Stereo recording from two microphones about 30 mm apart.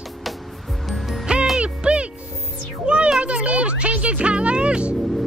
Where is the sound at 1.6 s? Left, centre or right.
Right.